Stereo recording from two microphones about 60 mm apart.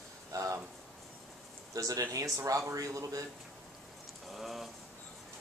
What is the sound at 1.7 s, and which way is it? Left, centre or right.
Speech, right.